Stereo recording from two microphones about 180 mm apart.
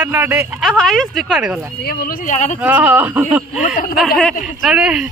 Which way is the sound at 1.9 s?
55° left (ahead or behind).